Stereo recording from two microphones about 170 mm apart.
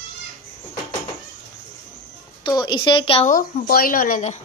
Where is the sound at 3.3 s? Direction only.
60° left (ahead or behind).